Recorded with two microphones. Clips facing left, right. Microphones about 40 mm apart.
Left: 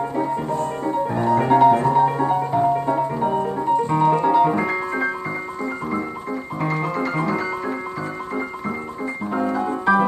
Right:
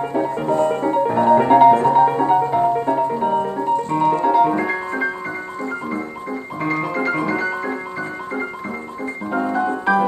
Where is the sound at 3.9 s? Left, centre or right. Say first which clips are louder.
Right 2 dB; centre.